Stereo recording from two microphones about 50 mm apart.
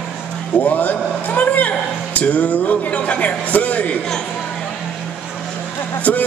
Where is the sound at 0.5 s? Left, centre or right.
Left.